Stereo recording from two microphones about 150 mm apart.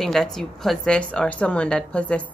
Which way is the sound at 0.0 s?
5° left (ahead or behind).